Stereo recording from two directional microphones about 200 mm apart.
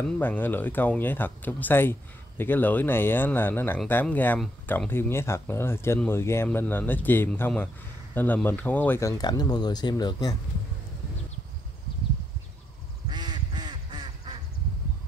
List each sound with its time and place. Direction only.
0.2 s speech: 10° left (ahead or behind)
13.1 s quack: 20° right (ahead or behind)